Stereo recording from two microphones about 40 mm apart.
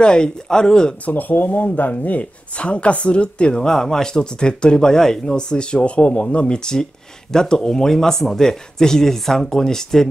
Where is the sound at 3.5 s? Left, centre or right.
Centre.